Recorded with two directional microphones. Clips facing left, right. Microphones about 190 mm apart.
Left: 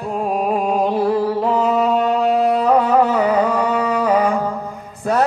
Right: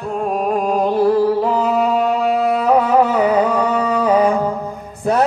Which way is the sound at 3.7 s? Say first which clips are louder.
Right 1 dB; 20° right (ahead or behind).